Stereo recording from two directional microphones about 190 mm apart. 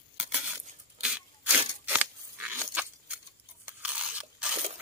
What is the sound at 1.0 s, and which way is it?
Tearing, 5° right (ahead or behind).